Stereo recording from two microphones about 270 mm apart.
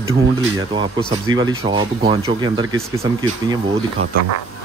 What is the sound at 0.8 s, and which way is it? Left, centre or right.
Speech, centre.